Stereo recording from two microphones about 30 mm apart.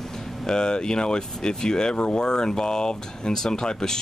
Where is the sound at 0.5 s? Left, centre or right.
Left.